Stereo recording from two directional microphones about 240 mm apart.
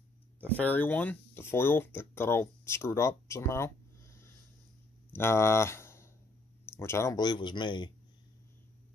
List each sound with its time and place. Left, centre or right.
0.4 s speech: centre